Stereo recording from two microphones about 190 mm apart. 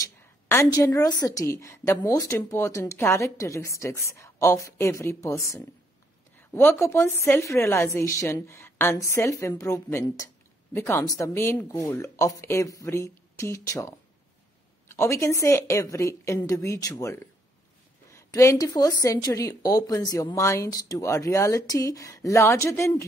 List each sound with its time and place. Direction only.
0.5 s speech: 15° left (ahead or behind)